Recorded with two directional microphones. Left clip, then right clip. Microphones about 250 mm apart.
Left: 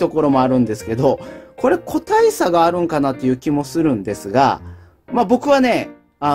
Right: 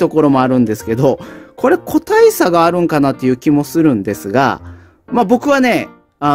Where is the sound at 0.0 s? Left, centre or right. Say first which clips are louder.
Right 4 dB; right.